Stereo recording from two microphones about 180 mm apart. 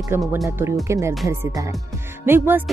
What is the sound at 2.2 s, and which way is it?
Speech, 10° right (ahead or behind).